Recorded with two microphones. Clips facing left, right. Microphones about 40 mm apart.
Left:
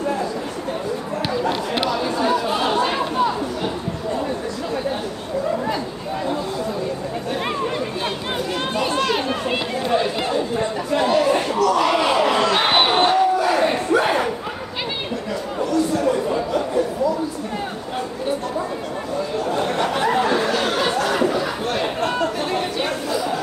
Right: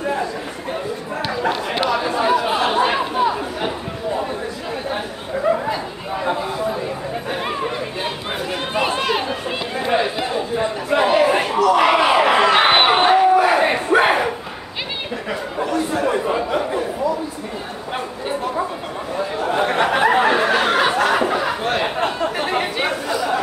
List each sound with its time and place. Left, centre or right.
2.7 s chatter: right
8.7 s chatter: right
10.9 s crowd: right
15.9 s chatter: right
19.5 s a sound: right
22.5 s chatter: right